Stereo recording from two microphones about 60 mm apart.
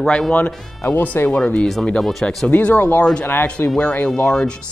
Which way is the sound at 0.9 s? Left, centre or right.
Left.